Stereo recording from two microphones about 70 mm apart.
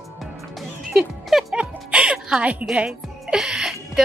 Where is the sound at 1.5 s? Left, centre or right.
Centre.